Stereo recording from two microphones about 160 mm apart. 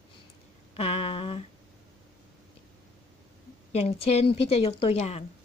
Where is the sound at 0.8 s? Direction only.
40° left (ahead or behind).